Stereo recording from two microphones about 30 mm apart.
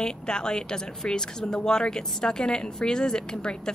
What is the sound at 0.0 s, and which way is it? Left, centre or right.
Speech, left.